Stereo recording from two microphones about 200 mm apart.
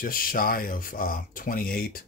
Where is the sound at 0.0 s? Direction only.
45° left (ahead or behind).